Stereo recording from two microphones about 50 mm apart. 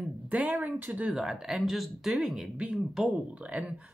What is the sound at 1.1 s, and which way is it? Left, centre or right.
Speech, centre.